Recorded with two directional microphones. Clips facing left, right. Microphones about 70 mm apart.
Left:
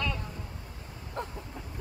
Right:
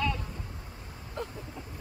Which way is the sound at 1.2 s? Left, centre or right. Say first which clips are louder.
Left 1 dB; left.